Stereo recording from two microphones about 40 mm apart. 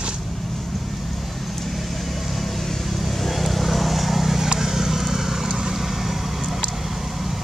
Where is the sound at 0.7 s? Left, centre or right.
Centre.